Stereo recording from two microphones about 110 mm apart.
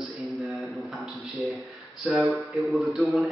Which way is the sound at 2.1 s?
Centre (ahead or behind).